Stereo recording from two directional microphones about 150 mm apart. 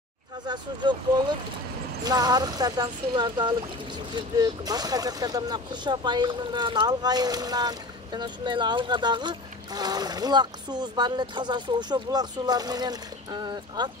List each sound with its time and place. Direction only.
0.5 s vehicle: 30° right (ahead or behind)
2.0 s speech: 25° right (ahead or behind)